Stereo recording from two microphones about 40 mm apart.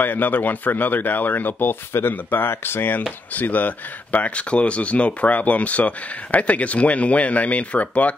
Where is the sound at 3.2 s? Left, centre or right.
Left.